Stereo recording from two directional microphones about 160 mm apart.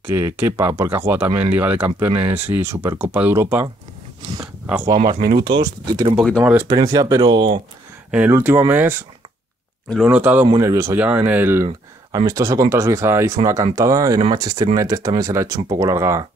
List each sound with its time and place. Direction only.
0.0 s speech: 15° right (ahead or behind)
5.3 s speech: 25° right (ahead or behind)
6.1 s speech: 5° left (ahead or behind)
6.4 s speech: 10° right (ahead or behind)
6.7 s speech: 20° right (ahead or behind)
8.1 s speech: 10° right (ahead or behind)
10.0 s speech: 10° right (ahead or behind)